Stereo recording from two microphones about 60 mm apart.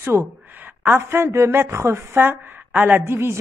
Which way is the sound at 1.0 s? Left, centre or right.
Right.